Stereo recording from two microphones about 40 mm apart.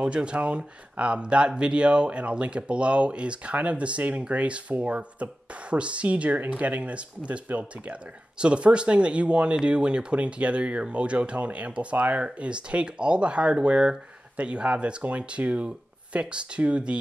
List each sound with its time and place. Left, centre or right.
0.0 s speech: right